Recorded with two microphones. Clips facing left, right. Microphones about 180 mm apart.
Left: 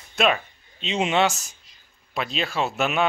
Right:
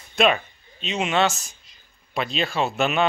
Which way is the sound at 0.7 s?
25° left (ahead or behind).